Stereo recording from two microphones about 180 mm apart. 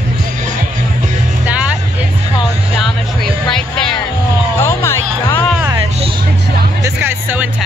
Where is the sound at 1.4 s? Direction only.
5° right (ahead or behind).